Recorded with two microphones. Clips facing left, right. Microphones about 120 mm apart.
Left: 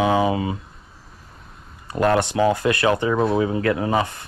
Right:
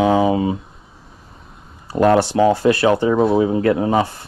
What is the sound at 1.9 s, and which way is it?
Speech, 30° right (ahead or behind).